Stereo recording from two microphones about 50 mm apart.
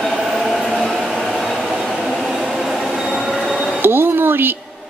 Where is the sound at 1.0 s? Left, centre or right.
Centre.